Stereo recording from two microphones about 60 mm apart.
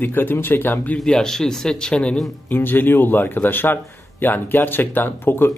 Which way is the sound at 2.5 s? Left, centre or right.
Left.